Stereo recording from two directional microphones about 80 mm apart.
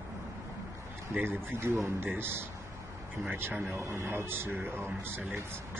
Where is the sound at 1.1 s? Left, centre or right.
Right.